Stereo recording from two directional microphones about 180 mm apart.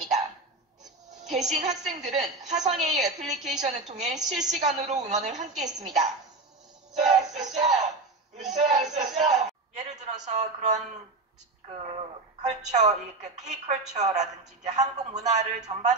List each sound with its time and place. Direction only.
1.2 s music: centre (ahead or behind)
1.5 s a woman's voice: 40° right (ahead or behind)
7.0 s music: 40° right (ahead or behind)
8.5 s a sound: 40° right (ahead or behind)
11.8 s a woman's voice: 35° right (ahead or behind)